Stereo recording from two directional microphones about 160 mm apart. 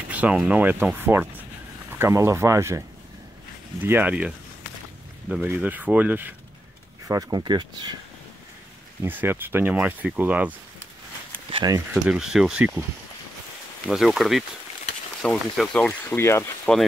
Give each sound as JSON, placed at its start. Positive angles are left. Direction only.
{"t": 0.1, "sound": "speech", "side_deg": -5}
{"t": 3.8, "sound": "speech", "side_deg": -10}
{"t": 5.3, "sound": "speech", "side_deg": -10}
{"t": 7.1, "sound": "speech", "side_deg": -25}
{"t": 9.0, "sound": "speech", "side_deg": -10}
{"t": 11.5, "sound": "speech", "side_deg": -25}
{"t": 11.9, "sound": "speech", "side_deg": -5}
{"t": 13.8, "sound": "speech", "side_deg": 0}
{"t": 16.1, "sound": "speech", "side_deg": 15}